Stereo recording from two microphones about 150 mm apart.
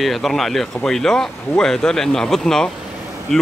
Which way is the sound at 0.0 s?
Centre (ahead or behind).